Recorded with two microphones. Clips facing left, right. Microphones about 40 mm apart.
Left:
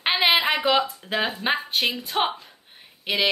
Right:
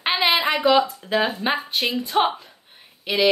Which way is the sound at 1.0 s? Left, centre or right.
Centre.